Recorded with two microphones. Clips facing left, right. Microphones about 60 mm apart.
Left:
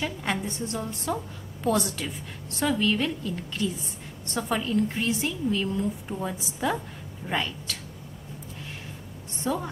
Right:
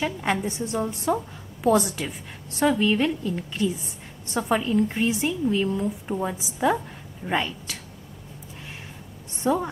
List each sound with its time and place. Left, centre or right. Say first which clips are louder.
0.0 s a woman's voice: right 4 dB; centre
9.4 s a woman's voice: right 5 dB; centre